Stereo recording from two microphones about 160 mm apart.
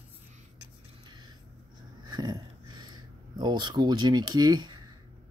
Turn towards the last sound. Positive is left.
turn(degrees=-25)  # may be behind; listen again after turning